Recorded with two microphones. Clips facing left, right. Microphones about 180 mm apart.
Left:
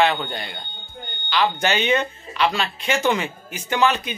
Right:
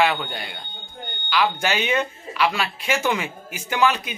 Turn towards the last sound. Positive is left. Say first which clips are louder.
# left 1 dB
turn(degrees=-10)  # may be behind; listen again after turning